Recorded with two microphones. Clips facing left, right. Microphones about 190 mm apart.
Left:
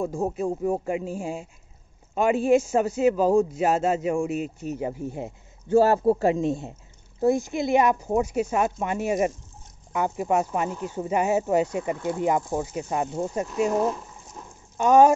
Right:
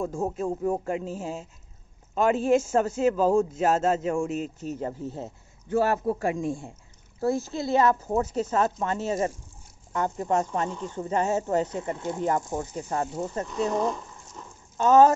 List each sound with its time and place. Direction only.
0.0 s speech: 10° left (ahead or behind)
5.7 s speech: 30° left (ahead or behind); by 15.1 s 15° left (ahead or behind)